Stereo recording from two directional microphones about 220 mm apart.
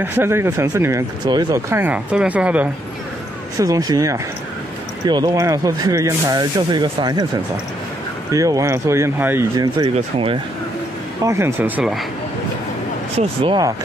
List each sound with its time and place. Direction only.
0.0 s speech: 10° right (ahead or behind)
8.3 s speech: 15° right (ahead or behind)
9.9 s speech: 25° right (ahead or behind)
11.2 s speech: 10° right (ahead or behind)
13.2 s speech: 25° right (ahead or behind)